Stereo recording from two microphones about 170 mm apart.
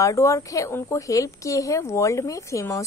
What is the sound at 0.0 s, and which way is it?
A woman's voice, 20° left (ahead or behind).